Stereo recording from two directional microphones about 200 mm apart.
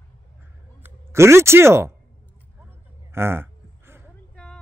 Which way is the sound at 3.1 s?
10° right (ahead or behind).